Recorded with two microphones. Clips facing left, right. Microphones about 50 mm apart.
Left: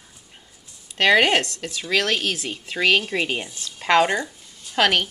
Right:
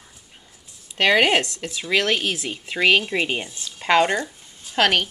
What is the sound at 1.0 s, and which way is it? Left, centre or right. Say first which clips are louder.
A woman's voice: even; centre.